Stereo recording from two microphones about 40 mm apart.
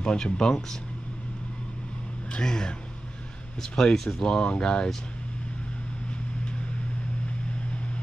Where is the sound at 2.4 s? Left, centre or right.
Centre.